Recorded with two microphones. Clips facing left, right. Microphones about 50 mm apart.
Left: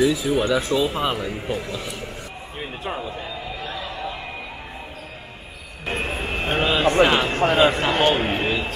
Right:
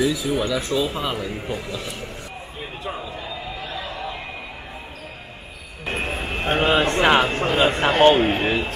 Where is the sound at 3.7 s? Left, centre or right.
Right.